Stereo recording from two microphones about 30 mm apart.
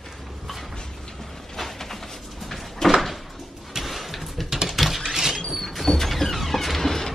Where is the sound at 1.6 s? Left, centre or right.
Centre.